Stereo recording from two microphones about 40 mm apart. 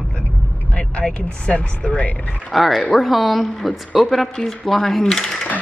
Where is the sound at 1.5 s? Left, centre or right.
Left.